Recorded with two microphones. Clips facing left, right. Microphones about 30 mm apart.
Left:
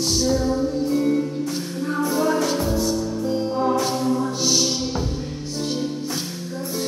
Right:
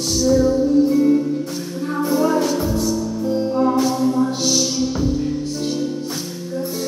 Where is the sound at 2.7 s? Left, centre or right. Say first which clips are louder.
Right 2 dB; centre.